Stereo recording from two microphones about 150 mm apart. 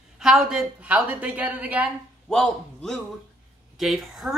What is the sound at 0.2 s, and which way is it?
A woman's voice, 5° right (ahead or behind).